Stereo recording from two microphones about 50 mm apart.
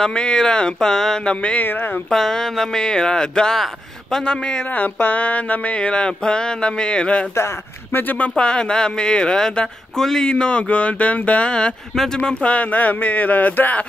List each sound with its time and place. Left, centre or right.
0.0 s speech: centre
1.2 s speech: left
2.0 s speech: centre
3.5 s speech: centre
4.2 s speech: centre
4.7 s speech: left
7.9 s speech: left
8.4 s speech: centre